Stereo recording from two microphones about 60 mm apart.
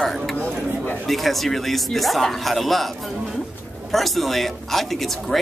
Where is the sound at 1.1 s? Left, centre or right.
Centre.